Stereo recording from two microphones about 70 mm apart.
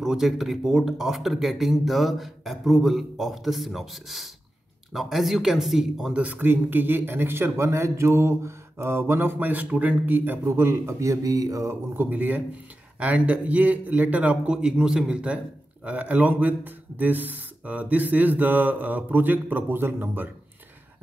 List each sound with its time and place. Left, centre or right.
0.0 s speech: centre
6.1 s speech: right
12.0 s a man's voice: right